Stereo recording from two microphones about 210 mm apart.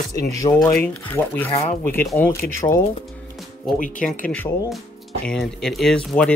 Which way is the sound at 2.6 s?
25° left (ahead or behind).